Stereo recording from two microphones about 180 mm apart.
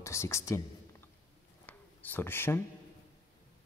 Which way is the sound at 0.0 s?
15° left (ahead or behind).